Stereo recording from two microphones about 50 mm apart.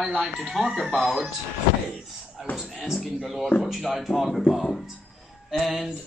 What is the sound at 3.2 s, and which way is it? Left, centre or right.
Speech, centre.